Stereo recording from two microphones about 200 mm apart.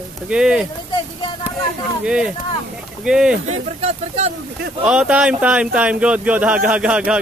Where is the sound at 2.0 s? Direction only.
5° right (ahead or behind).